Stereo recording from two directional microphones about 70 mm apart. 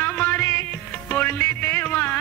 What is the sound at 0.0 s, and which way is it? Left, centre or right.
Music, left.